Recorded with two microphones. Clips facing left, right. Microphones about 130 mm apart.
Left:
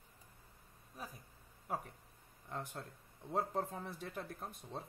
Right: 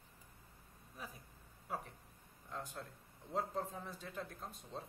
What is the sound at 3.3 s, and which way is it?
Speech, 55° left (ahead or behind).